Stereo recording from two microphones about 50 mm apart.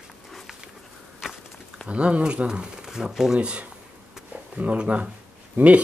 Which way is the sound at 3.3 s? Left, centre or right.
Right.